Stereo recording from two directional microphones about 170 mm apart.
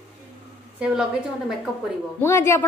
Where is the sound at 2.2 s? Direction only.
15° left (ahead or behind).